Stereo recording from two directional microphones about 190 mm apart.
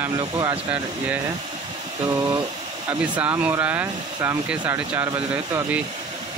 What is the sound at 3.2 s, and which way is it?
Speech, 10° right (ahead or behind).